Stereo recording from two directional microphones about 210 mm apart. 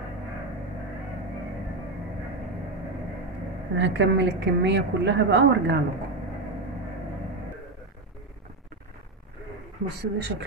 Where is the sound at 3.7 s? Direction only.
55° right (ahead or behind).